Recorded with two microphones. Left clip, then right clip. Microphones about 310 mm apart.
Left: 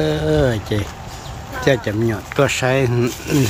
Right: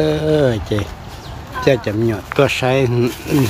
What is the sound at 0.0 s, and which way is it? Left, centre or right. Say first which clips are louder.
Speech: right 2 dB; centre.